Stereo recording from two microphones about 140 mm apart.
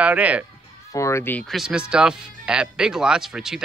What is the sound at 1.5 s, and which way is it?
Speech, 5° right (ahead or behind).